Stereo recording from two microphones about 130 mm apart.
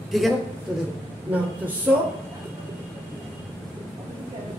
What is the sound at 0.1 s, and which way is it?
Speech, centre (ahead or behind).